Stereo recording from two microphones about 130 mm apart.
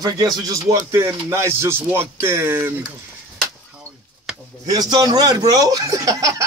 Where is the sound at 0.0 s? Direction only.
30° right (ahead or behind).